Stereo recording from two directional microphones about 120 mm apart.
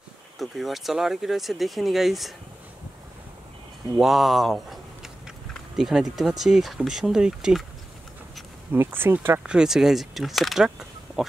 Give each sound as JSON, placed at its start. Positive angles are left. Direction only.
{"t": 0.4, "sound": "speech", "side_deg": 0}
{"t": 3.9, "sound": "speech", "side_deg": 0}
{"t": 8.7, "sound": "speech", "side_deg": -20}
{"t": 9.4, "sound": "speech", "side_deg": -5}